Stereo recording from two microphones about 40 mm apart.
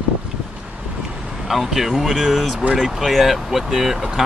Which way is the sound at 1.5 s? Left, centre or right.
Centre.